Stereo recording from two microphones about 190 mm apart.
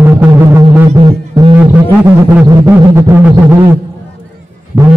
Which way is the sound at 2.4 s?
15° right (ahead or behind).